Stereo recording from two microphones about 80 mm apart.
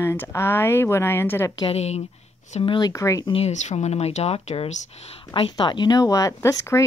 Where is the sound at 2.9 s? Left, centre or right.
Left.